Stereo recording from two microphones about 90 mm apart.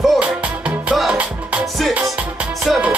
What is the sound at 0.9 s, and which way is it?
Music, 5° right (ahead or behind).